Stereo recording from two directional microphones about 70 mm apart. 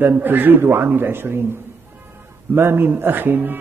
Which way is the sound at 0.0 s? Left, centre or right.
Right.